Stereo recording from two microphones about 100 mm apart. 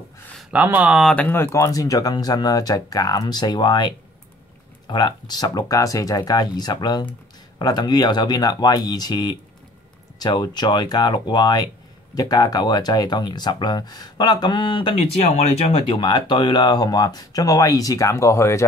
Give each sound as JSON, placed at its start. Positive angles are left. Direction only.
{"t": 0.5, "sound": "speech", "side_deg": -15}
{"t": 1.1, "sound": "speech", "side_deg": 15}
{"t": 1.5, "sound": "speech", "side_deg": 35}
{"t": 15.5, "sound": "speech", "side_deg": 90}
{"t": 16.0, "sound": "speech", "side_deg": 50}